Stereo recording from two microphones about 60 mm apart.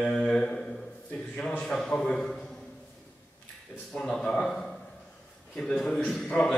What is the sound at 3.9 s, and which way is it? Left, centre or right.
Speech, centre.